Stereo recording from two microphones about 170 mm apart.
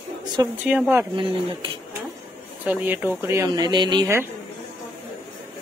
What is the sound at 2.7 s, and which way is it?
Speech, 10° right (ahead or behind).